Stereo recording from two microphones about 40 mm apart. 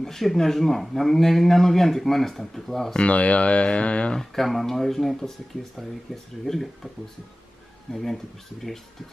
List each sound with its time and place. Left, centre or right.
0.0 s a man's voice: centre
2.9 s speech: left
4.2 s a man's voice: centre
7.9 s a man's voice: centre